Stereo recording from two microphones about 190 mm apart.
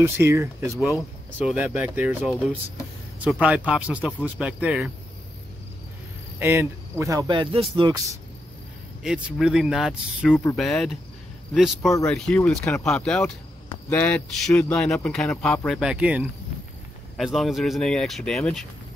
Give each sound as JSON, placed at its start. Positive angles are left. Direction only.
{"t": 0.0, "sound": "speech", "side_deg": -15}
{"t": 6.4, "sound": "speech", "side_deg": -15}
{"t": 9.0, "sound": "speech", "side_deg": -5}